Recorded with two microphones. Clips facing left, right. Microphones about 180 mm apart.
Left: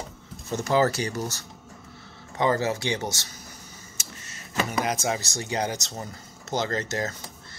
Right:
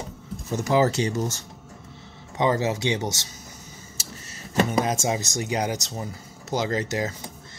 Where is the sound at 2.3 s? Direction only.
20° right (ahead or behind).